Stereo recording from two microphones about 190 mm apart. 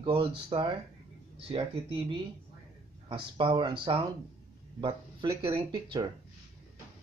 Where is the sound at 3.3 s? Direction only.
25° right (ahead or behind).